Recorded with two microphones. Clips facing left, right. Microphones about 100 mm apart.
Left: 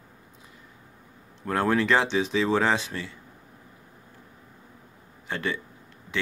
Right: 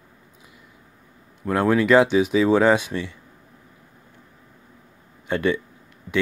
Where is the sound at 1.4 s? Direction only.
15° right (ahead or behind).